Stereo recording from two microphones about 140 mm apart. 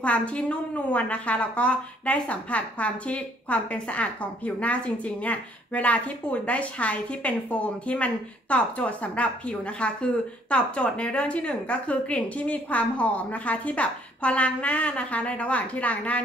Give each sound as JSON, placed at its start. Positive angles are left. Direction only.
{"t": 0.0, "sound": "a woman's voice", "side_deg": 10}